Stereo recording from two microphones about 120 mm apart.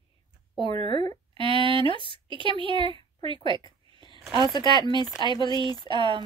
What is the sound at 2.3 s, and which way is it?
A woman's voice, 45° right (ahead or behind).